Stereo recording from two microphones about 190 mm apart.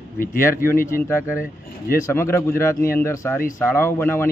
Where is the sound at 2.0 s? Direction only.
15° left (ahead or behind).